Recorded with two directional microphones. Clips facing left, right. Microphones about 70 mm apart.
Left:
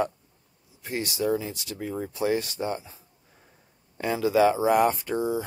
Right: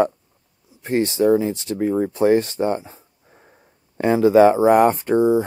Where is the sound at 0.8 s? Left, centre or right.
Right.